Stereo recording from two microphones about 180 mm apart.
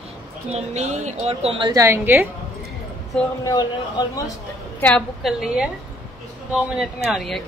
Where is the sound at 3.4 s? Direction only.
20° left (ahead or behind).